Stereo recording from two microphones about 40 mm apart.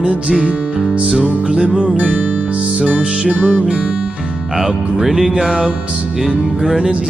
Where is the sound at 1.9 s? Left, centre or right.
Right.